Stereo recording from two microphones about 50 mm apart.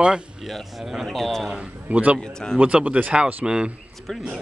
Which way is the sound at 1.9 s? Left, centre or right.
Right.